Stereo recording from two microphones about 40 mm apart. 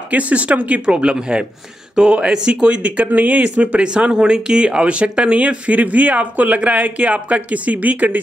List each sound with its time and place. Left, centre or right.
0.1 s speech: right
0.8 s speech: right
3.1 s speech: right